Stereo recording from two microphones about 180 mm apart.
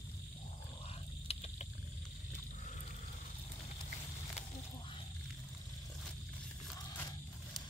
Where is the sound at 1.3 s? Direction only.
35° left (ahead or behind).